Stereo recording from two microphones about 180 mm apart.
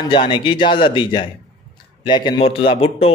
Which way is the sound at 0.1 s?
25° left (ahead or behind).